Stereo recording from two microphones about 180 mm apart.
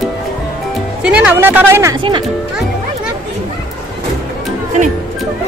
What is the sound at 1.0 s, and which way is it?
Speech, 5° right (ahead or behind).